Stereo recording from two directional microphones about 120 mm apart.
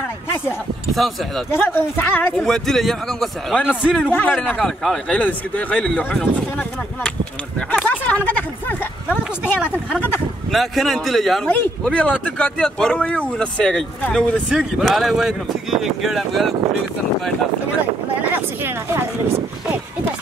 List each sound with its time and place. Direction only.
1.5 s speech: 15° left (ahead or behind)
2.3 s speech: 5° left (ahead or behind)
4.0 s speech: 15° left (ahead or behind)
4.4 s speech: 5° left (ahead or behind)
7.7 s a sound: 10° left (ahead or behind)
10.5 s speech: centre (ahead or behind)
14.5 s speech: 5° right (ahead or behind)